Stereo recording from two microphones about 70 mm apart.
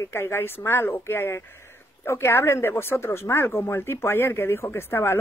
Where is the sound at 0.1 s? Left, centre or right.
Left.